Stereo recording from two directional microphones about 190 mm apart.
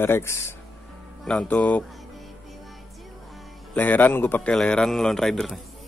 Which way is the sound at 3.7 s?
10° left (ahead or behind).